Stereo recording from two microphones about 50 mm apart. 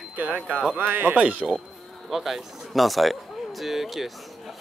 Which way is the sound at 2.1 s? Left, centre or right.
Centre.